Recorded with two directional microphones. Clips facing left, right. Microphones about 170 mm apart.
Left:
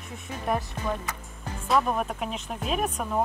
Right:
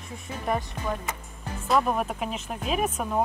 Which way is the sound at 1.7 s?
Centre (ahead or behind).